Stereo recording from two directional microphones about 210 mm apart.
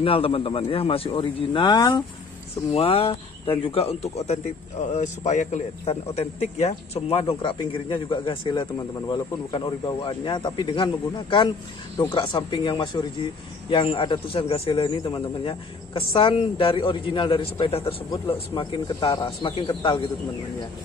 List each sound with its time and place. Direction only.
0.0 s speech: 25° left (ahead or behind)